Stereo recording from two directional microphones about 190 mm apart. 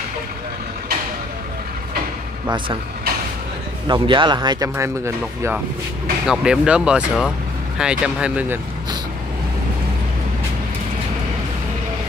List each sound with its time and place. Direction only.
3.8 s speech: 25° right (ahead or behind)
6.2 s speech: 5° right (ahead or behind)